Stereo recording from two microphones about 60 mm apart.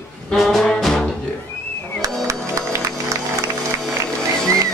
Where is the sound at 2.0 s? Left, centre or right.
Right.